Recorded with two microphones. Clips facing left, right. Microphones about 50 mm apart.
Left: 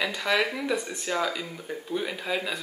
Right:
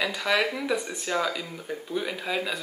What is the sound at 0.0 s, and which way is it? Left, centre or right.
Speech, centre.